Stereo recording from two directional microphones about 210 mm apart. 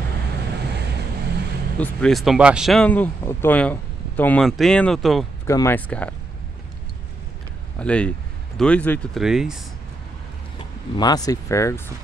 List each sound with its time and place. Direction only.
1.8 s speech: 5° left (ahead or behind)
5.5 s speech: 10° left (ahead or behind)
7.8 s speech: 5° left (ahead or behind)
11.0 s speech: 20° left (ahead or behind)